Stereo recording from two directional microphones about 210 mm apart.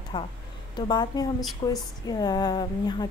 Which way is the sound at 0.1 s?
20° left (ahead or behind).